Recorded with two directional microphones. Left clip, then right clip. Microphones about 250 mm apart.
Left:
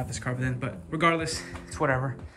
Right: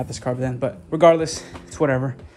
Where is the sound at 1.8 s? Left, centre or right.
Left.